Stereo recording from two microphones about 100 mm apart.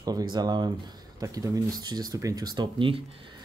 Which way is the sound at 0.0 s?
45° right (ahead or behind).